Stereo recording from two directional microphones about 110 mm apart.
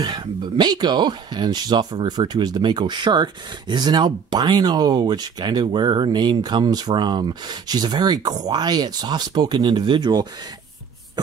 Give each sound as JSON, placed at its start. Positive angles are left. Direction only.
{"t": 0.0, "sound": "speech", "side_deg": -40}